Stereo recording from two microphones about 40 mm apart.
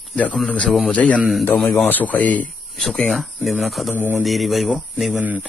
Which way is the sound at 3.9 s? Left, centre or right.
Right.